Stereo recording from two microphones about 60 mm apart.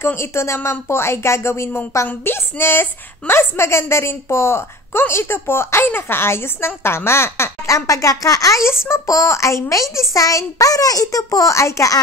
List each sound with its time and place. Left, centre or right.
0.0 s a woman's voice: left